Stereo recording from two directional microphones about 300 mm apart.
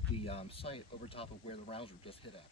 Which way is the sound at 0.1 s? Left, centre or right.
Centre.